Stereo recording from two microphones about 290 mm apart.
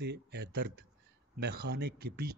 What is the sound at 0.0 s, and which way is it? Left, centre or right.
Speech, right.